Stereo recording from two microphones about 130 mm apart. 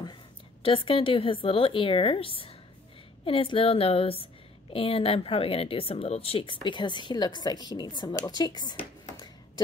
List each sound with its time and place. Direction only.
0.0 s a woman's voice: 40° left (ahead or behind)